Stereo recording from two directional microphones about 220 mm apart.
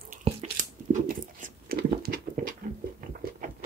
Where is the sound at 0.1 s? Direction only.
30° right (ahead or behind).